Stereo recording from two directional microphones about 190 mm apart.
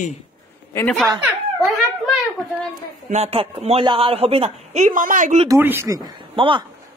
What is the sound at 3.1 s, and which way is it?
Speech, 35° right (ahead or behind).